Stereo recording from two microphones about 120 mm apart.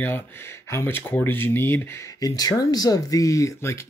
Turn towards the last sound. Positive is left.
turn(degrees=30)  # may be behind; listen again after turning